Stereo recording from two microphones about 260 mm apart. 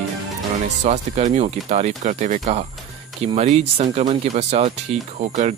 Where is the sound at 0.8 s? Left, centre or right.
Right.